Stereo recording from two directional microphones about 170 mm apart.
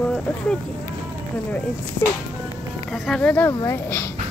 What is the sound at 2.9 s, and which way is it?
Speech, 5° left (ahead or behind).